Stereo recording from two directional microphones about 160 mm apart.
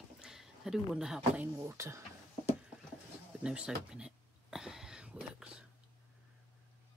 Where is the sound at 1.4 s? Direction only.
15° right (ahead or behind).